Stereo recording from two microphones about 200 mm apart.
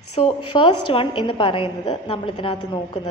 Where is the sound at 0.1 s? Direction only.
25° left (ahead or behind).